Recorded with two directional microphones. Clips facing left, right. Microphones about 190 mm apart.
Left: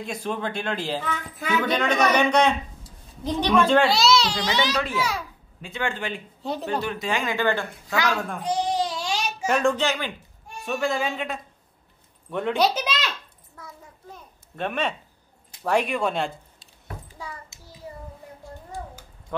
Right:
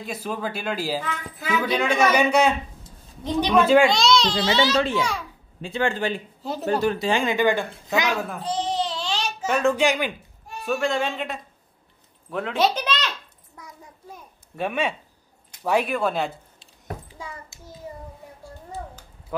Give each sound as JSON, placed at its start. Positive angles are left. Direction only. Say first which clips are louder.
{"t": 0.0, "sound": "speech", "louder": "even", "side_deg": -5}
{"t": 3.9, "sound": "a child's voice", "louder": "right 1 dB", "side_deg": 5}
{"t": 4.7, "sound": "a child's voice", "louder": "right 3 dB", "side_deg": -25}
{"t": 7.3, "sound": "speech", "louder": "right 3 dB", "side_deg": -15}
{"t": 8.4, "sound": "a sound", "louder": "left 1 dB", "side_deg": 10}
{"t": 9.6, "sound": "speech", "louder": "right 5 dB", "side_deg": -10}
{"t": 10.6, "sound": "a man's voice", "louder": "right 2 dB", "side_deg": 0}
{"t": 14.1, "sound": "a sound", "louder": "right 3 dB", "side_deg": -10}
{"t": 15.6, "sound": "a man's voice", "louder": "right 1 dB", "side_deg": -5}
{"t": 17.5, "sound": "child singing", "louder": "right 5 dB", "side_deg": 20}